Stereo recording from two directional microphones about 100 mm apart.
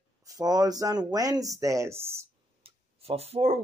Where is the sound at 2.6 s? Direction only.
85° right.